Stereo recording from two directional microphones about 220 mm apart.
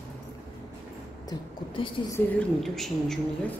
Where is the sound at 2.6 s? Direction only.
Centre (ahead or behind).